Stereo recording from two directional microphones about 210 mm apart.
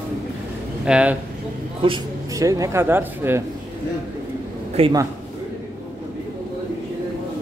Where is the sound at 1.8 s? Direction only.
20° right (ahead or behind).